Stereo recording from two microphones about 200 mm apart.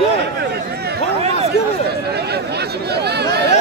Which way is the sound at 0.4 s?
55° right (ahead or behind).